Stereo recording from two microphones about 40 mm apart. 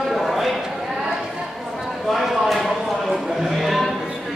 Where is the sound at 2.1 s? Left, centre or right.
Centre.